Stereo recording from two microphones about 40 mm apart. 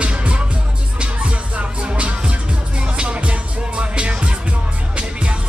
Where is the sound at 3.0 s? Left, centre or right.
Right.